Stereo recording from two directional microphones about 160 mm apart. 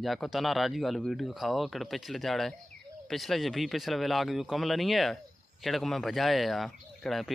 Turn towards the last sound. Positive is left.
turn(degrees=0)  # may be behind; listen again after turning